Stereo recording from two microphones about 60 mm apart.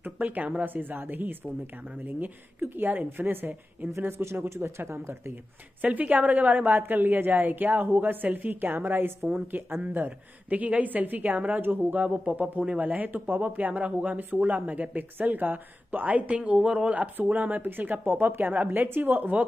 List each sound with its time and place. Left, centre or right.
0.0 s a woman's voice: right
4.0 s speech: right
5.8 s a woman's voice: right
9.8 s a woman's voice: right